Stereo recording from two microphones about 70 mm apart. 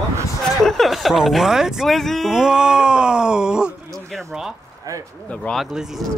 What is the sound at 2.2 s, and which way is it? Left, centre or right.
Speech, centre.